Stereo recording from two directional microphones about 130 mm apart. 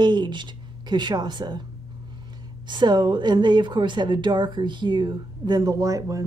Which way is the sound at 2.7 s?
35° right (ahead or behind).